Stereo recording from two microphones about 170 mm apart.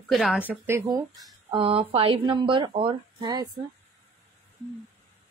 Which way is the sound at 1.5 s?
30° right (ahead or behind).